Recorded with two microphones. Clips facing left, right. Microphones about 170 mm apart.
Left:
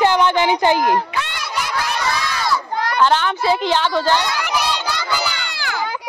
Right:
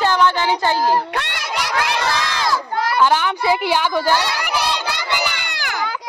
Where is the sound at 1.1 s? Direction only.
70° right (ahead or behind).